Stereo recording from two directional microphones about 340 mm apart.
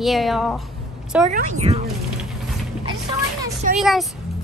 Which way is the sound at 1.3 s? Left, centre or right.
Right.